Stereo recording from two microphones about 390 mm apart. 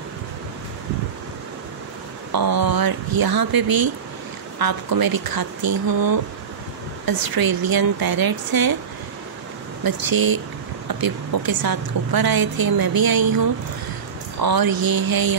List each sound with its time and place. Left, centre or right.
2.3 s a woman's voice: right
9.8 s a woman's voice: right
14.4 s a woman's voice: right